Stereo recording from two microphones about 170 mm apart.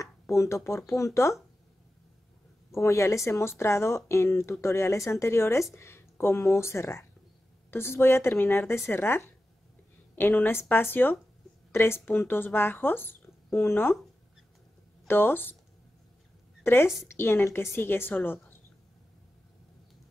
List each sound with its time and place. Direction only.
0.0 s a sound: 15° left (ahead or behind)
0.7 s speech: 15° left (ahead or behind)
2.8 s speech: 15° left (ahead or behind)
15.0 s speech: 10° left (ahead or behind)
16.6 s a woman's voice: 15° left (ahead or behind)